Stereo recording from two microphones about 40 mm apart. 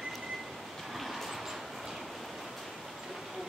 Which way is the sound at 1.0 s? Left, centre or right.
Centre.